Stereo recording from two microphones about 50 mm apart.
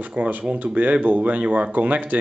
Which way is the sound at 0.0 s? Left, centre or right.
Right.